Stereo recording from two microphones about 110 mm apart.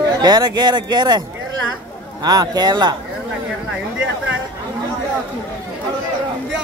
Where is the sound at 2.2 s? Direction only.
35° right (ahead or behind).